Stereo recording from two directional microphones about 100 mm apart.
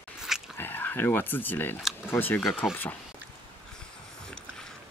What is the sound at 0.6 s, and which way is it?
Speech, 20° left (ahead or behind).